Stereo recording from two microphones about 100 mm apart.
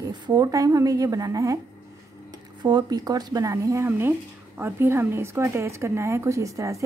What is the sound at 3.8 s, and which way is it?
A woman's voice, 25° right (ahead or behind).